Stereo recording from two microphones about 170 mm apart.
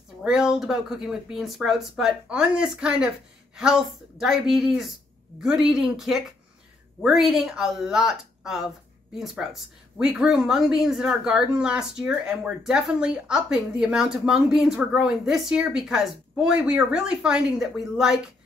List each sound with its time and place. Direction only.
0.2 s speech: 5° right (ahead or behind)